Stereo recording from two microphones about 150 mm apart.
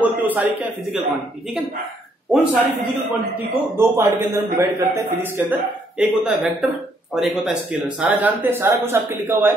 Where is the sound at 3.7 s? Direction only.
20° right (ahead or behind).